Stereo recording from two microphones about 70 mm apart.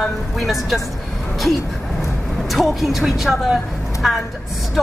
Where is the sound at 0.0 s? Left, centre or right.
Centre.